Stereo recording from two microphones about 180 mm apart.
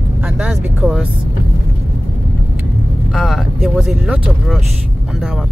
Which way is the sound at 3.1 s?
Centre (ahead or behind).